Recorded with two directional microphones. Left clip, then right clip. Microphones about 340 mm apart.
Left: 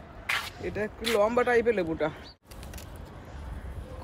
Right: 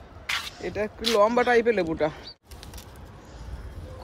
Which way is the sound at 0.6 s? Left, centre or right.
Right.